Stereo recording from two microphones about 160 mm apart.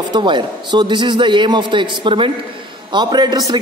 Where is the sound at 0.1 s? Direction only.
30° right (ahead or behind).